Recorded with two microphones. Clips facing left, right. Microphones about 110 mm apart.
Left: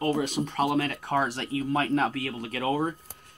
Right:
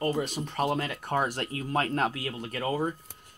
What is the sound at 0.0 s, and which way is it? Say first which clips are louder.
Speech: left 3 dB; centre (ahead or behind).